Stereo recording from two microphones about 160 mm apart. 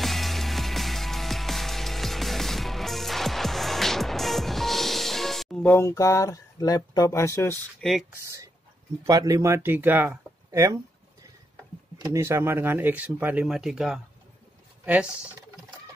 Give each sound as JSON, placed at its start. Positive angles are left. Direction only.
{"t": 0.0, "sound": "music", "side_deg": 0}
{"t": 8.1, "sound": "speech", "side_deg": -15}
{"t": 12.0, "sound": "speech", "side_deg": -15}